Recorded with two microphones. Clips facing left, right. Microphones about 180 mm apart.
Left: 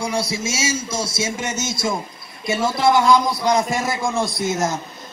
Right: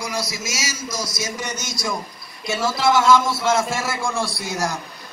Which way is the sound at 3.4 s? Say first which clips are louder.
Left 2 dB; 15° left (ahead or behind).